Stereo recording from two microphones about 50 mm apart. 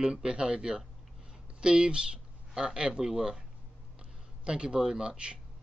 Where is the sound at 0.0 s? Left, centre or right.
Centre.